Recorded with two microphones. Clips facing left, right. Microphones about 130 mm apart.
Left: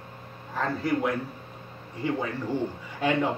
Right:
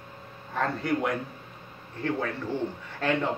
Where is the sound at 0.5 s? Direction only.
Centre (ahead or behind).